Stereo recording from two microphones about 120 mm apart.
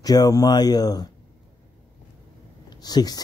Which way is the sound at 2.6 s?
35° left (ahead or behind).